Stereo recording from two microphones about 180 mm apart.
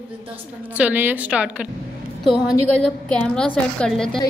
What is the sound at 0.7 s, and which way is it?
A woman's voice, 10° right (ahead or behind).